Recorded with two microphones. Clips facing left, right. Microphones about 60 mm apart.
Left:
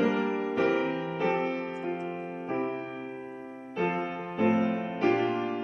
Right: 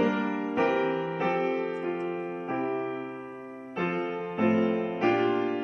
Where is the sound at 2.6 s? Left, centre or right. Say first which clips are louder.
Right 3 dB; centre.